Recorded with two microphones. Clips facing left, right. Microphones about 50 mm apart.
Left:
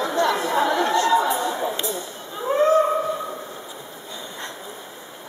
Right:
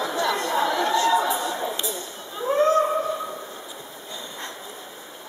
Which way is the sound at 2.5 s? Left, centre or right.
Centre.